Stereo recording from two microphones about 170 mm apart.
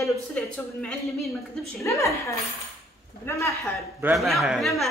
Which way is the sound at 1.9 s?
15° left (ahead or behind).